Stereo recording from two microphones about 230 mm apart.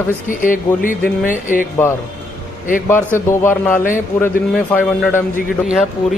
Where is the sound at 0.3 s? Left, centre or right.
Left.